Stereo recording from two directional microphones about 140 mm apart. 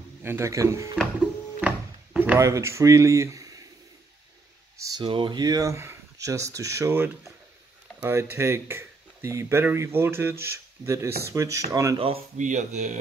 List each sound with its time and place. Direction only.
0.2 s speech: 20° right (ahead or behind)
2.1 s speech: 15° right (ahead or behind)
4.7 s speech: 25° right (ahead or behind)
5.0 s speech: 35° right (ahead or behind)
12.4 s speech: 65° right (ahead or behind)